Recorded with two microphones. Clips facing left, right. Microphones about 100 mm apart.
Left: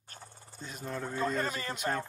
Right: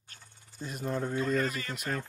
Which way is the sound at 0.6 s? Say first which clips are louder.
Right 5 dB; 5° right (ahead or behind).